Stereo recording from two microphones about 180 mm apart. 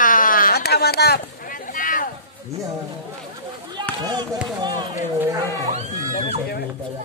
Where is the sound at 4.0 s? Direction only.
25° right (ahead or behind).